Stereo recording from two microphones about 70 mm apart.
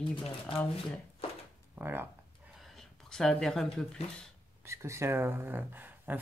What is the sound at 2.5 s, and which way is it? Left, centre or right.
Speech, centre.